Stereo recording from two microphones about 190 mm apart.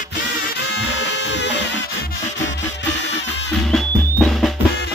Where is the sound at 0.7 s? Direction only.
65° left (ahead or behind).